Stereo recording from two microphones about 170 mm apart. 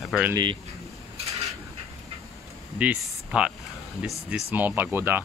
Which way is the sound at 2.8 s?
5° right (ahead or behind).